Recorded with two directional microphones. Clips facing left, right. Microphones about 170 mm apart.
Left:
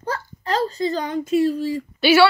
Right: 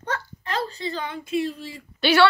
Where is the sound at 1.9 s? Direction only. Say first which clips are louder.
Left 4 dB; 5° left (ahead or behind).